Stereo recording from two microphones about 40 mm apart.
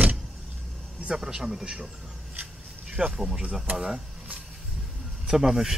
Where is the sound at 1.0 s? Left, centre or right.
Centre.